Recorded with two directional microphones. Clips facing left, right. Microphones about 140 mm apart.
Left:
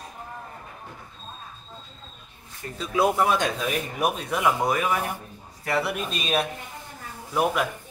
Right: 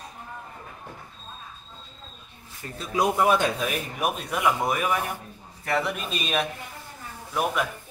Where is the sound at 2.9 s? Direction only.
15° right (ahead or behind).